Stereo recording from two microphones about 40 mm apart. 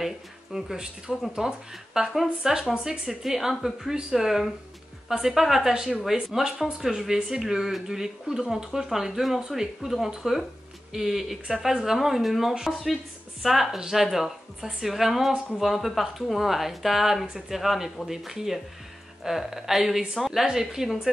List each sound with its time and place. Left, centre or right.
0.0 s speech: centre